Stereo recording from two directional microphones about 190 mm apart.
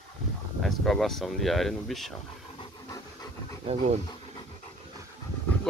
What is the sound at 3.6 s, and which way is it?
Speech, 35° right (ahead or behind).